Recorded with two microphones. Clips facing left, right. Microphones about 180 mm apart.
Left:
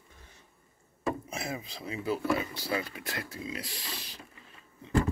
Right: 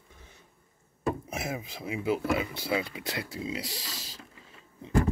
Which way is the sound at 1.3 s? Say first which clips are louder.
Right 2 dB; 20° right (ahead or behind).